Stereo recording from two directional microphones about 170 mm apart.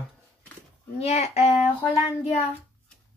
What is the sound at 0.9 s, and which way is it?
Child singing, 40° left (ahead or behind).